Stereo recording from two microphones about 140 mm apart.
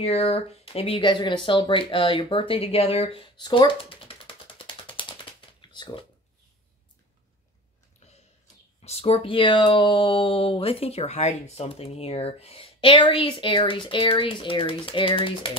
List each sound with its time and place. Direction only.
0.0 s speech: 45° left (ahead or behind)
5.6 s a sound: 35° left (ahead or behind)
8.8 s speech: 45° left (ahead or behind)